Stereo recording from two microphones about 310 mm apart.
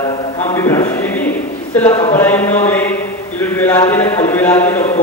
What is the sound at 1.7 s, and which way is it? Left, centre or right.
A man's voice, centre.